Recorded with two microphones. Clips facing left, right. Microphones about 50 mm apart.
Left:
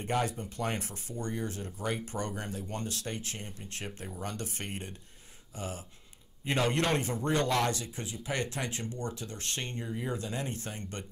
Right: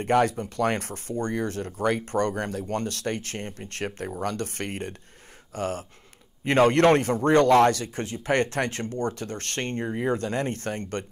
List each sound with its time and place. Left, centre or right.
0.0 s speech: right